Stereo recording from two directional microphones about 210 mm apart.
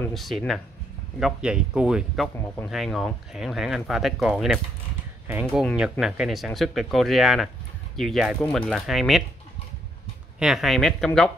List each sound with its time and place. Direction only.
0.0 s speech: centre (ahead or behind)
10.4 s speech: centre (ahead or behind)